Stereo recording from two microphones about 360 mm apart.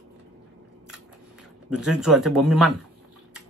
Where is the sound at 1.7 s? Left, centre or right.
Centre.